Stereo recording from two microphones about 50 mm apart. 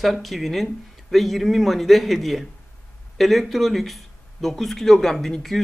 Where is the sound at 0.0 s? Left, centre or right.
Centre.